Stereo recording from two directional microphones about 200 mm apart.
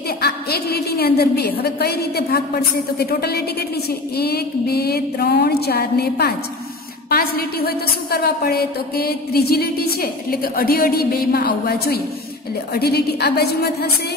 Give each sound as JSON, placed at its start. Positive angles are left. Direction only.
{"t": 0.2, "sound": "a woman's voice", "side_deg": 55}